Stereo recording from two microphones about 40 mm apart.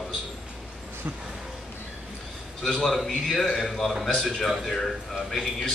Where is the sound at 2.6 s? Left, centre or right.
Centre.